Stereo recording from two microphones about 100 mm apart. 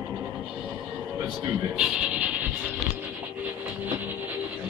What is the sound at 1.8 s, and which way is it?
Speech, 10° right (ahead or behind).